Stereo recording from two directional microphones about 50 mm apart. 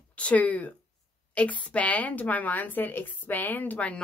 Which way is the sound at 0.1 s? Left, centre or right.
Left.